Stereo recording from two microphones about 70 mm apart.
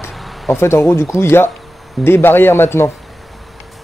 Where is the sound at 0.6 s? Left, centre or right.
Left.